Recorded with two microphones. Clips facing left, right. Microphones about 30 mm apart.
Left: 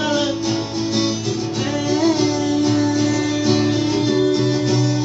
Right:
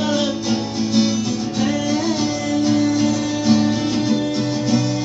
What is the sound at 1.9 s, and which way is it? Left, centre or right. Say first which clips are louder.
Music: left 3 dB; left.